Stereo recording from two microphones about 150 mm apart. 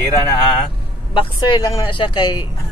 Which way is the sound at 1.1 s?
30° left (ahead or behind).